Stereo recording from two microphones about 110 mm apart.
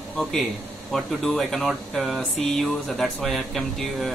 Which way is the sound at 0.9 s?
Centre (ahead or behind).